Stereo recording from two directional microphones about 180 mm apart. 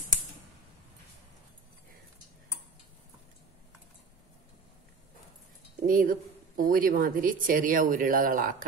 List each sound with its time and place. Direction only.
5.9 s speech: 50° right (ahead or behind)